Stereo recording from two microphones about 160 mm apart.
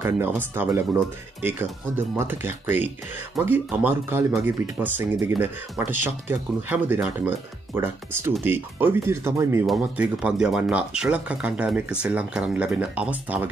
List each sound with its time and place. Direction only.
0.7 s speech: 15° right (ahead or behind)